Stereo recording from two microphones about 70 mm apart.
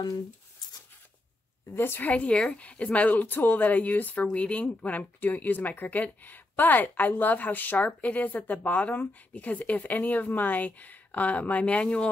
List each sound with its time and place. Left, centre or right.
1.7 s speech: left; by 12.1 s centre